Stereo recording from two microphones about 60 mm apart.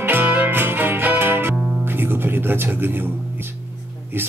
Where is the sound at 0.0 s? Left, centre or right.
Right.